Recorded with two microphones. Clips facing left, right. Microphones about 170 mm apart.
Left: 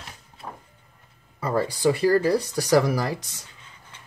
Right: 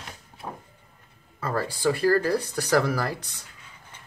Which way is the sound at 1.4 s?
15° left (ahead or behind).